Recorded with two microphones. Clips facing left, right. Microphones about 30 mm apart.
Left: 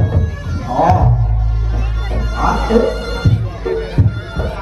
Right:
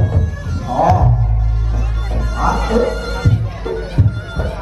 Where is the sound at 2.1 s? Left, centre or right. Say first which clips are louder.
Left 1 dB; centre.